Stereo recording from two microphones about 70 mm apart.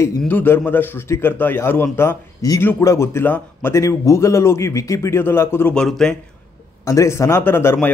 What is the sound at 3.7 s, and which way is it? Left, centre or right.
Speech, left.